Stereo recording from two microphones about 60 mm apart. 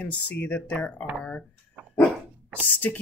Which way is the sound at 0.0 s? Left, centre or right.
Left.